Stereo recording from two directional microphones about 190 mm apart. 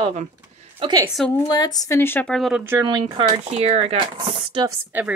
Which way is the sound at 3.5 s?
35° right (ahead or behind).